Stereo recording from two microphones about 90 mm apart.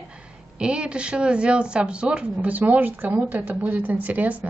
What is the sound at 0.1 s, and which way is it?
Speech, 10° right (ahead or behind).